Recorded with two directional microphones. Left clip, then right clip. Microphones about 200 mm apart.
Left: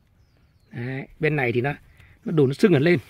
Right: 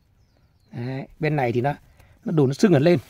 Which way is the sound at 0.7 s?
15° right (ahead or behind).